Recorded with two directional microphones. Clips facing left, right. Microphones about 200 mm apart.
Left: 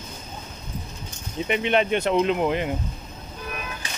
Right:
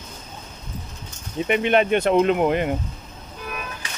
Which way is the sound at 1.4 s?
55° right (ahead or behind).